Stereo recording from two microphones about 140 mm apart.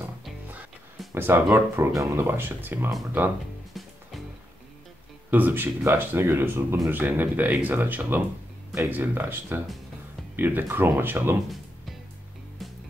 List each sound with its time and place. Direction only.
1.1 s speech: 15° right (ahead or behind)
3.8 s music: centre (ahead or behind)
5.3 s speech: 15° right (ahead or behind)